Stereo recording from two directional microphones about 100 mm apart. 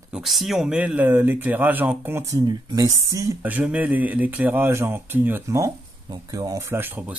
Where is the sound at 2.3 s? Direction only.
35° right (ahead or behind).